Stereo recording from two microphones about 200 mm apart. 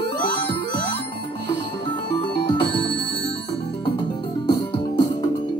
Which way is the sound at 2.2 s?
25° left (ahead or behind).